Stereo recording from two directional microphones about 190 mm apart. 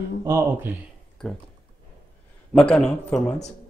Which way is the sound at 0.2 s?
15° right (ahead or behind).